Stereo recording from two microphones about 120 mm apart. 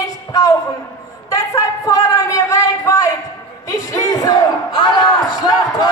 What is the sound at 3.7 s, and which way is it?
Crowd, 30° left (ahead or behind).